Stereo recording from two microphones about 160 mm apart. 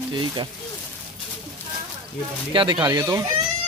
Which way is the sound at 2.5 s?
30° right (ahead or behind).